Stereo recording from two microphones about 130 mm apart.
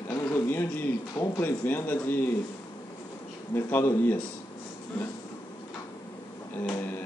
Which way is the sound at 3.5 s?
15° left (ahead or behind).